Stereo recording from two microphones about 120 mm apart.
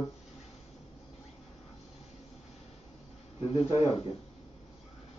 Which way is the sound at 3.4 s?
55° left (ahead or behind).